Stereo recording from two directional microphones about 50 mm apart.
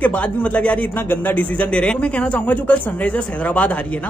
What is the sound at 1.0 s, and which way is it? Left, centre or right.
A man's voice, left.